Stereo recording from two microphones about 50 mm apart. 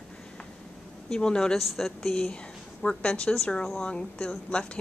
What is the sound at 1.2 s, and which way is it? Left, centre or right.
Speech, centre.